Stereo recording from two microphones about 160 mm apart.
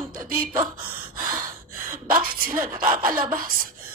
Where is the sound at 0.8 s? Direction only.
60° right (ahead or behind).